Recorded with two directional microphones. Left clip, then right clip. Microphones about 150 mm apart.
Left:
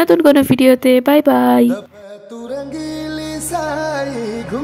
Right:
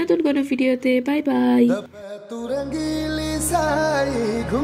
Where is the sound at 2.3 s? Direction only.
Centre (ahead or behind).